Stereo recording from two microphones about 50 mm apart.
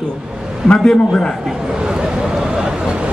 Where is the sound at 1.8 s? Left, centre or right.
Centre.